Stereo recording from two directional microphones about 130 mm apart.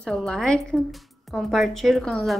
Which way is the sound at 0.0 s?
5° left (ahead or behind).